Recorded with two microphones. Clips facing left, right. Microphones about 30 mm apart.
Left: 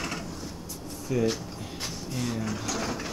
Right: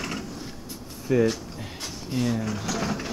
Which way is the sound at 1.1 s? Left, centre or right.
Right.